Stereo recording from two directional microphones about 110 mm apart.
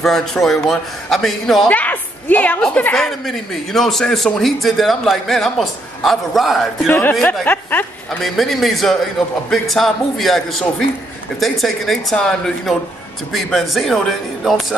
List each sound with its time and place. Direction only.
0.0 s a woman's voice: 5° left (ahead or behind)
1.7 s a woman's voice: 15° left (ahead or behind)
6.9 s speech: 20° left (ahead or behind)
8.2 s a woman's voice: centre (ahead or behind)